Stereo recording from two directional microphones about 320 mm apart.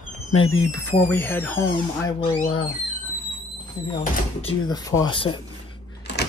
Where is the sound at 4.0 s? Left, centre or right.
Centre.